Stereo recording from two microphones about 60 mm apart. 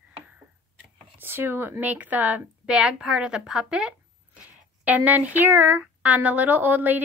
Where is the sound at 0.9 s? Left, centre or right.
Right.